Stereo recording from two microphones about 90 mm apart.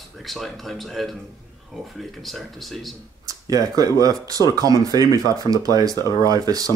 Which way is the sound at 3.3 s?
40° right (ahead or behind).